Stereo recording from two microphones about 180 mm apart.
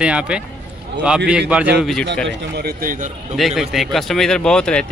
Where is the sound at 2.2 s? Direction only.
60° right (ahead or behind).